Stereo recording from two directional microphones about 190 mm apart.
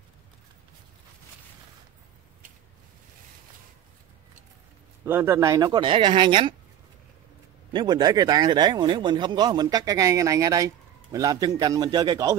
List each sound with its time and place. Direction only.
5.0 s speech: 10° right (ahead or behind)
7.7 s speech: 20° right (ahead or behind)